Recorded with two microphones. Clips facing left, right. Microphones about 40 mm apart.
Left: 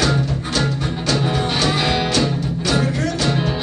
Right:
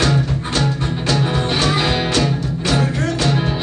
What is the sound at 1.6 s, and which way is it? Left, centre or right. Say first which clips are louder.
Music: right 1 dB; centre.